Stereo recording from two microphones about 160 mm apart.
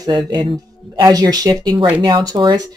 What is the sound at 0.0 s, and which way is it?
Speech, 30° right (ahead or behind).